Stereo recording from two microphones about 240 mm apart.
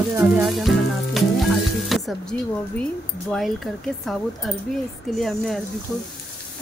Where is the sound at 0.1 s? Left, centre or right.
Centre.